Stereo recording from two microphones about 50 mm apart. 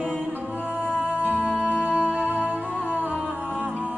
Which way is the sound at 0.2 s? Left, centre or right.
Right.